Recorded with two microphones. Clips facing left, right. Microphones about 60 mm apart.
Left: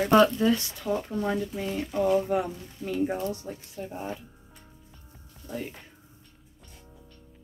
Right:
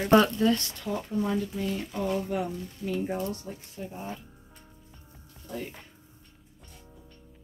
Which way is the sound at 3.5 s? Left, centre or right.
Centre.